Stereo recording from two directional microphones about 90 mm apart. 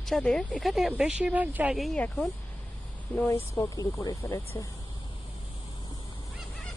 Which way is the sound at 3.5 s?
40° left (ahead or behind).